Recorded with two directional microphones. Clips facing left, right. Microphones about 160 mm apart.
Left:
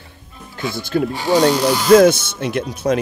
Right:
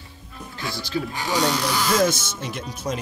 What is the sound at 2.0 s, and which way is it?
Speech, 65° left (ahead or behind).